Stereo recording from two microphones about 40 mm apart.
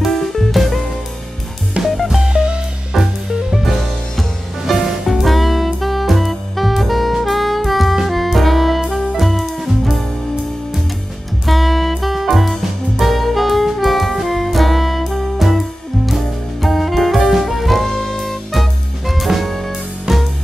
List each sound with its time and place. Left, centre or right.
0.0 s music: centre
2.1 s music: right
2.9 s music: centre
4.8 s music: centre
11.4 s music: centre
13.0 s saxophone: centre
16.6 s saxophone: centre